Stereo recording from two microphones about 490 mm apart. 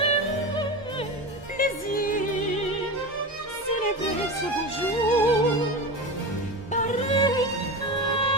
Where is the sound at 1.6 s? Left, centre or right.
Centre.